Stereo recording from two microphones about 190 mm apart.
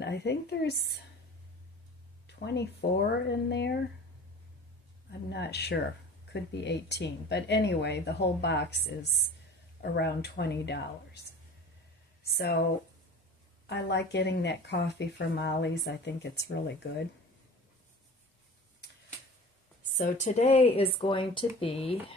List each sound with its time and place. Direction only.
0.0 s speech: 60° left (ahead or behind)
2.2 s speech: 60° left (ahead or behind)
5.3 s speech: 60° left (ahead or behind)
12.3 s speech: 60° left (ahead or behind)
13.7 s speech: 65° left (ahead or behind)
20.0 s speech: 40° left (ahead or behind)